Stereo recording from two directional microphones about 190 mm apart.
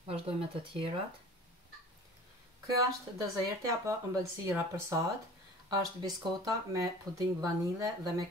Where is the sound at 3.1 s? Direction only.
20° right (ahead or behind).